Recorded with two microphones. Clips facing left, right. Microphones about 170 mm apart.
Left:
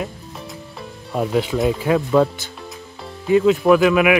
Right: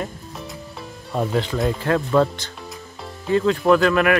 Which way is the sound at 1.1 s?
5° left (ahead or behind).